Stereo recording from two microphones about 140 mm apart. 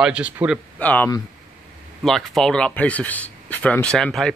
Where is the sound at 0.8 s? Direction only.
10° left (ahead or behind).